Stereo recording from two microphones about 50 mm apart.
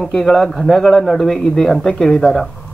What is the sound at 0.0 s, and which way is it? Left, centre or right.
A man's voice, centre.